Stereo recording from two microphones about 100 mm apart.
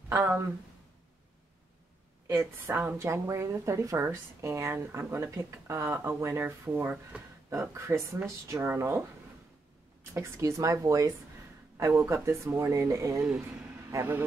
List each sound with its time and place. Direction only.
0.1 s a woman's voice: 25° right (ahead or behind)
2.2 s a woman's voice: 25° right (ahead or behind)
10.1 s a woman's voice: 30° right (ahead or behind)
13.9 s a woman's voice: 20° right (ahead or behind)